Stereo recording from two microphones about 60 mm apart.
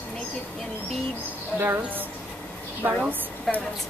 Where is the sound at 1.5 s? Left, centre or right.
Right.